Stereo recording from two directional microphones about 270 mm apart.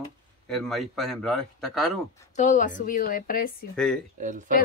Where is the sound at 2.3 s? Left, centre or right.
Left.